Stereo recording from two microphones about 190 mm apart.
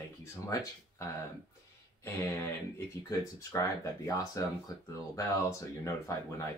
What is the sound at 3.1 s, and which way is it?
Speech, 15° left (ahead or behind).